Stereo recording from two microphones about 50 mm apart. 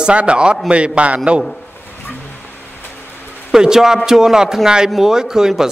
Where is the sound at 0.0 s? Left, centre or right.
Right.